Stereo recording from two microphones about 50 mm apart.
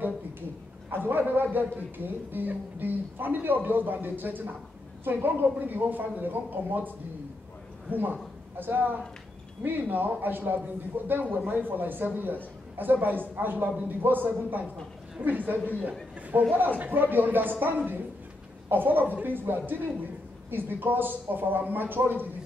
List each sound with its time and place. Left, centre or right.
0.8 s speech: right
7.9 s speech: right